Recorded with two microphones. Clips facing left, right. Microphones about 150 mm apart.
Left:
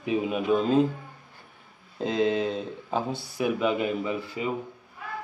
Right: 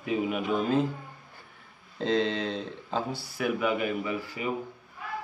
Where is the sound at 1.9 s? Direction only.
10° left (ahead or behind).